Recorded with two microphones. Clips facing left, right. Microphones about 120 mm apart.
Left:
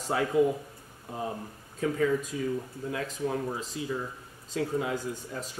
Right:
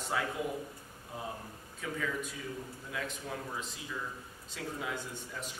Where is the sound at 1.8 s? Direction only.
40° left (ahead or behind).